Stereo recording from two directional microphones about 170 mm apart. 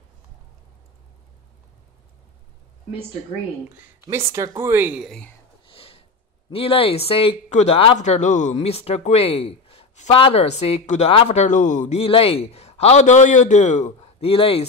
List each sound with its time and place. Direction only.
4.3 s speech: 15° right (ahead or behind)
5.7 s sniff: 35° left (ahead or behind)
6.5 s speech: 35° left (ahead or behind)